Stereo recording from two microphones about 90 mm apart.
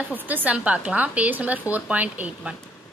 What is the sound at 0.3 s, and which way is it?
A woman's voice, 20° right (ahead or behind).